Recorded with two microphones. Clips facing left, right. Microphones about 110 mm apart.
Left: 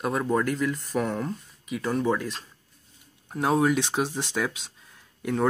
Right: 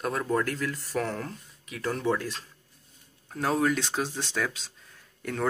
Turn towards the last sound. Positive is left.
turn(degrees=10)  # may be behind; listen again after turning